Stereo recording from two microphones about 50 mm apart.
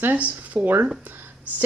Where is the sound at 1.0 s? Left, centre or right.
Right.